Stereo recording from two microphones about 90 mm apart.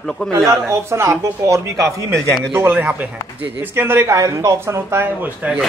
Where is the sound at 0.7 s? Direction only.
35° right (ahead or behind).